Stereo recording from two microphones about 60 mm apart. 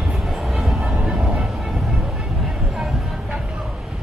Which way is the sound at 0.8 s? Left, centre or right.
Centre.